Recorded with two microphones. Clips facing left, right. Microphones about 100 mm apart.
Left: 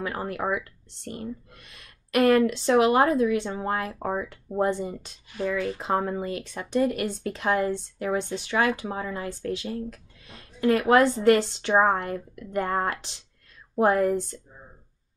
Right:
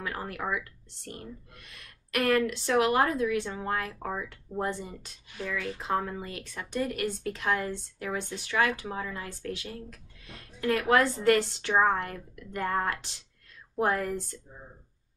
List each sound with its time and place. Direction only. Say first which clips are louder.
0.0 s speech: left 5 dB; 25° left (ahead or behind)
1.7 s speech: left 6 dB; 25° left (ahead or behind)